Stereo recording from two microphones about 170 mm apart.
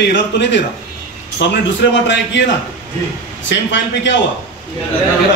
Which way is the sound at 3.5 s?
90° left.